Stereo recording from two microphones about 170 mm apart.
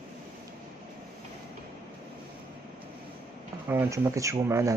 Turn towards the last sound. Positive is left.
turn(degrees=-20)  # may be behind; listen again after turning